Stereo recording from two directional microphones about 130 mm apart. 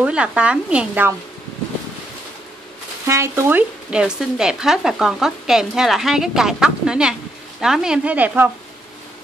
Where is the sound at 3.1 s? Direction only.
20° right (ahead or behind).